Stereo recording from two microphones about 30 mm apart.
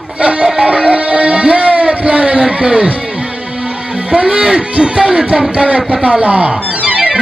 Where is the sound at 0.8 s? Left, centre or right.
Right.